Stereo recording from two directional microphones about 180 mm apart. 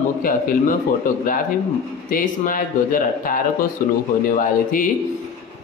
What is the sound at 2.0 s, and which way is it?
Speech, 50° left (ahead or behind).